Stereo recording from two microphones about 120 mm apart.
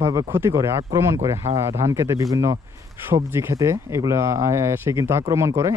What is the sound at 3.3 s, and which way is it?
Speech, 20° right (ahead or behind).